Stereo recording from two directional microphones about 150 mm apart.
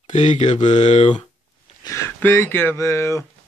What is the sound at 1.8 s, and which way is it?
Speech, 20° left (ahead or behind).